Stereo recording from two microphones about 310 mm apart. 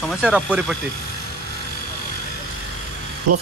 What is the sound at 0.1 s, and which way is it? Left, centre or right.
Speech, centre.